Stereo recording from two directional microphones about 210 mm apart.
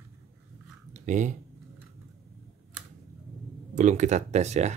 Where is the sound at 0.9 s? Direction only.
35° right (ahead or behind).